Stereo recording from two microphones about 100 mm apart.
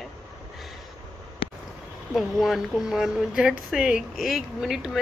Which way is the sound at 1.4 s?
65° left (ahead or behind).